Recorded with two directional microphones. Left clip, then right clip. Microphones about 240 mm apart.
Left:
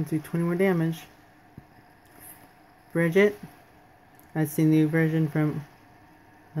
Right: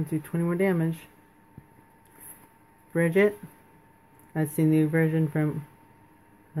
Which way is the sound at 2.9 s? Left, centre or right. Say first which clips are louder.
Left 1 dB; centre.